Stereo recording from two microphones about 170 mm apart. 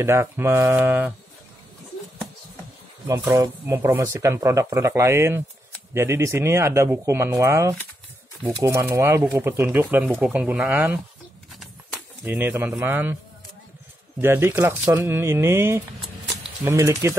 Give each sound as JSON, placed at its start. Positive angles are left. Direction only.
{"t": 0.0, "sound": "speech", "side_deg": -15}
{"t": 3.1, "sound": "speech", "side_deg": -20}
{"t": 12.3, "sound": "speech", "side_deg": -10}
{"t": 14.2, "sound": "speech", "side_deg": -15}